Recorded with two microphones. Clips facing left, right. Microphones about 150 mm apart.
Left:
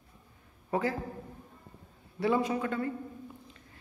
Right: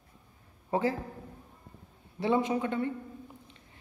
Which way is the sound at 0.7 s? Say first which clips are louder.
Right 2 dB; 25° right (ahead or behind).